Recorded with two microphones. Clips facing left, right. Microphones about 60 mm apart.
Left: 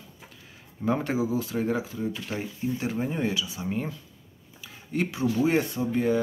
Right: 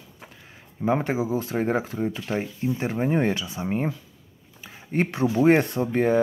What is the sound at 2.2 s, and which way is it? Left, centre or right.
Speech, right.